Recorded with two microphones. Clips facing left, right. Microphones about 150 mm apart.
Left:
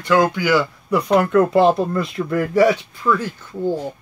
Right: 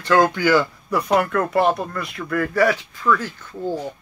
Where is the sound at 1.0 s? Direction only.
20° left (ahead or behind).